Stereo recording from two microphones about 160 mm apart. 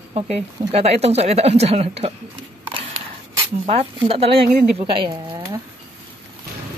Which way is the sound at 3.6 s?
40° right (ahead or behind).